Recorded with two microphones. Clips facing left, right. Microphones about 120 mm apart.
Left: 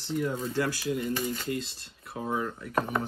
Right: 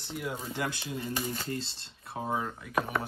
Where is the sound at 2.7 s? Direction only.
10° right (ahead or behind).